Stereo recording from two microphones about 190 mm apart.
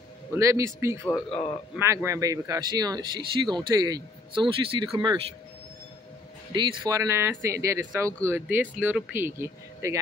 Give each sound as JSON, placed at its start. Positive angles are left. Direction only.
{"t": 0.3, "sound": "speech", "side_deg": -15}
{"t": 1.3, "sound": "speech", "side_deg": 30}
{"t": 2.0, "sound": "speech", "side_deg": -15}
{"t": 6.5, "sound": "speech", "side_deg": -25}